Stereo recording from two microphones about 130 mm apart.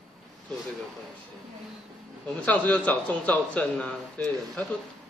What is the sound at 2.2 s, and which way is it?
A man's voice, 10° left (ahead or behind).